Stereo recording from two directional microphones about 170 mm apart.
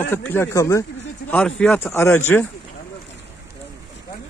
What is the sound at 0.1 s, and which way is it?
Speech, 10° left (ahead or behind).